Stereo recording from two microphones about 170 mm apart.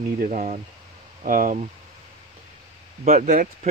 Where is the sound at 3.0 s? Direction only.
45° right (ahead or behind).